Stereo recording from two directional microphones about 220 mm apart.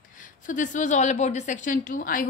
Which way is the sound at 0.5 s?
35° left (ahead or behind).